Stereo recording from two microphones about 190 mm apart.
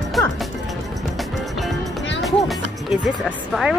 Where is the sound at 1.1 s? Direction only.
Centre (ahead or behind).